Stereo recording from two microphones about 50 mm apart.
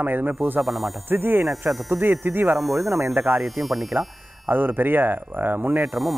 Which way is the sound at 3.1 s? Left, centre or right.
Right.